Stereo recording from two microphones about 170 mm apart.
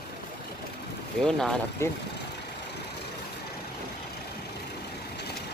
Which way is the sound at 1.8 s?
15° left (ahead or behind).